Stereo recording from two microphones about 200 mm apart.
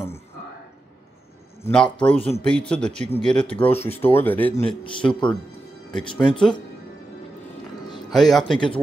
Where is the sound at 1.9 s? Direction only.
25° left (ahead or behind).